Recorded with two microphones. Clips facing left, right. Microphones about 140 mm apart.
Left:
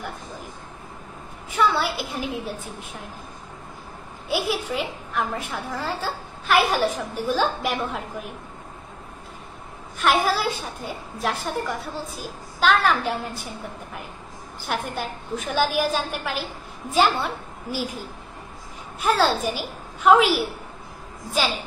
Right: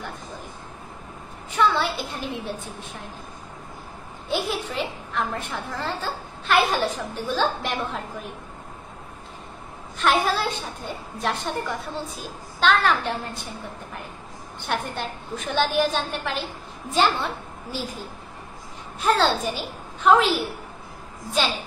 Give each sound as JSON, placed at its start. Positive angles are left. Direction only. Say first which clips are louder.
{"t": 1.5, "sound": "a woman's voice", "louder": "even", "side_deg": 10}
{"t": 4.3, "sound": "a woman's voice", "louder": "left 2 dB", "side_deg": 10}
{"t": 9.9, "sound": "a woman's voice", "louder": "left 1 dB", "side_deg": 5}
{"t": 14.6, "sound": "a woman's voice", "louder": "even", "side_deg": 5}
{"t": 18.9, "sound": "a woman's voice", "louder": "even", "side_deg": 5}